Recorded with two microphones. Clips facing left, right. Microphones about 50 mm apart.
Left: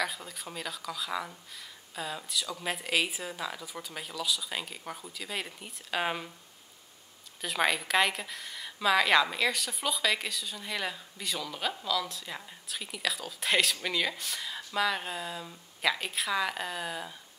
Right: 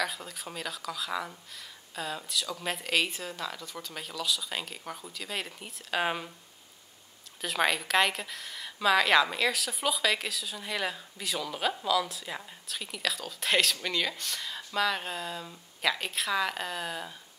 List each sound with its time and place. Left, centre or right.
0.0 s a woman's voice: centre
7.4 s a woman's voice: centre